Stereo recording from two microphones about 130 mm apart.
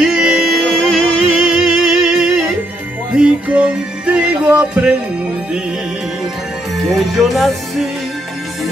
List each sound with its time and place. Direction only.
0.0 s music: 5° right (ahead or behind)
6.9 s music: centre (ahead or behind)